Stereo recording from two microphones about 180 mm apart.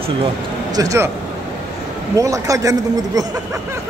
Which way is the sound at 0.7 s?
20° right (ahead or behind).